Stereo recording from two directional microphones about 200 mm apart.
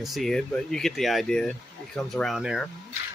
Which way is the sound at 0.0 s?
Centre (ahead or behind).